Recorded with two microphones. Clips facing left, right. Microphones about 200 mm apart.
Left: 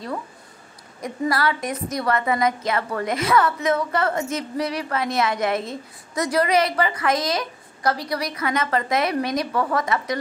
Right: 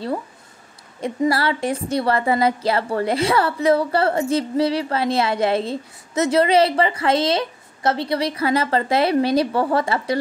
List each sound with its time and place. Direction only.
1.0 s a woman's voice: 25° right (ahead or behind)